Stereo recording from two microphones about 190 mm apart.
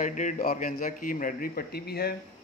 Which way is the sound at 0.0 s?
40° left (ahead or behind).